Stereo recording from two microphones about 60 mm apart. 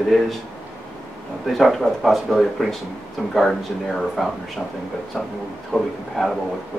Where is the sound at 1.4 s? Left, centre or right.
Centre.